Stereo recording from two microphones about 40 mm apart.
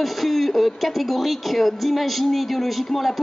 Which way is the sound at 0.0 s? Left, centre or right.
Centre.